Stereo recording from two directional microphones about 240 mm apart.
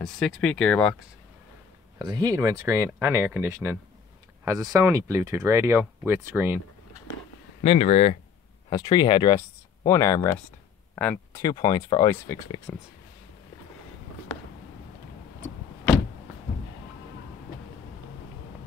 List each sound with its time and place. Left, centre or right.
0.0 s speech: centre
2.0 s speech: centre
7.6 s speech: left